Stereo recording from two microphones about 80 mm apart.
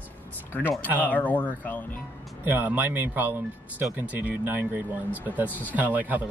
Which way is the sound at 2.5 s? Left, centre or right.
Right.